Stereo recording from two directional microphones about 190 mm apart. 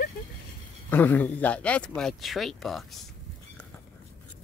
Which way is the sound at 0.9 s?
10° left (ahead or behind).